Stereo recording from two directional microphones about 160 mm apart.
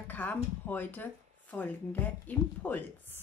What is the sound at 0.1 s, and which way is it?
Speech, 10° left (ahead or behind).